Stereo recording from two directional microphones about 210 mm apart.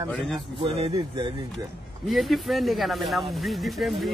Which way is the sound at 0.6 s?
25° right (ahead or behind).